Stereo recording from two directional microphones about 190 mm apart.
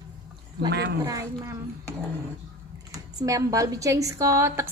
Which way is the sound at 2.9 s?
15° right (ahead or behind).